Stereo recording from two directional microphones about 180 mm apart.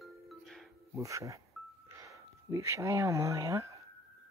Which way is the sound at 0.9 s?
15° right (ahead or behind).